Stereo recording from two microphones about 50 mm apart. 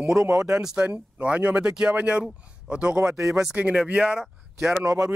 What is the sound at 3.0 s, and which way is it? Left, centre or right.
Speech, right.